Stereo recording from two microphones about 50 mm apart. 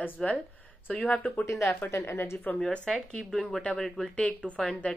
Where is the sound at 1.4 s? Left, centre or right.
Left.